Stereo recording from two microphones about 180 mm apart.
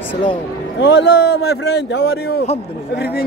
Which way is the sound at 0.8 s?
70° left (ahead or behind).